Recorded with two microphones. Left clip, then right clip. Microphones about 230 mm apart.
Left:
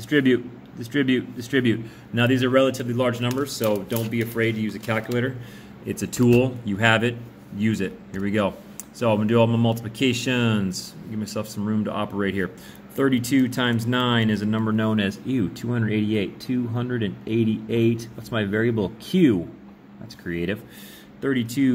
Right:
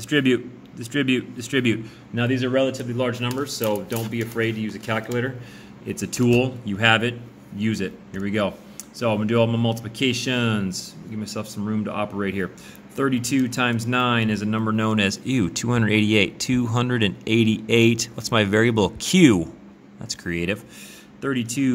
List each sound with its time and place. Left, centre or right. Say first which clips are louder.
0.1 s a man's voice: even; centre
2.1 s a man's voice: left 2 dB; centre; by 19.4 s right
20.1 s speech: right 2 dB; right
21.2 s a man's voice: left 1 dB; centre